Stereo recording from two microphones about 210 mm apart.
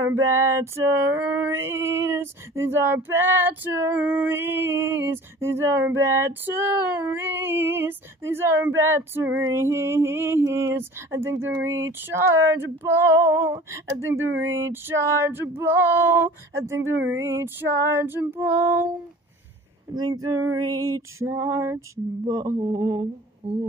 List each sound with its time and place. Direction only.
0.0 s female singing: 15° right (ahead or behind)
19.9 s female singing: 20° right (ahead or behind)